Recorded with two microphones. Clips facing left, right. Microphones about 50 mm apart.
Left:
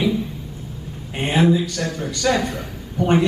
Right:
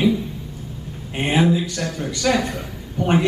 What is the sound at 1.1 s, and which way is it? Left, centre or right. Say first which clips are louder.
Speech: left 1 dB; centre.